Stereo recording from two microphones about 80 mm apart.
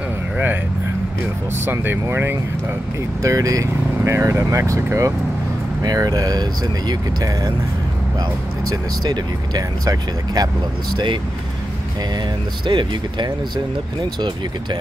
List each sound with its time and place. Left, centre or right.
1.7 s speech: right
3.2 s speech: right
5.8 s speech: right
8.6 s speech: right
12.6 s speech: right